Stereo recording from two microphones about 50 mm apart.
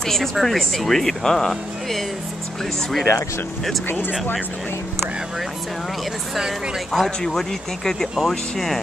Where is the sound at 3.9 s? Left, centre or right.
Left.